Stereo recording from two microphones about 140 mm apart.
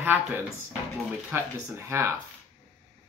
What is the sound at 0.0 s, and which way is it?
Speech, 15° right (ahead or behind).